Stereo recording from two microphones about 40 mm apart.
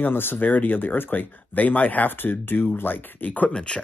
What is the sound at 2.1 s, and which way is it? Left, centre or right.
Speech, left.